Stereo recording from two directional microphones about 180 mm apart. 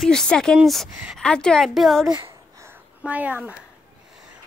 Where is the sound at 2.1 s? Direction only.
25° right (ahead or behind).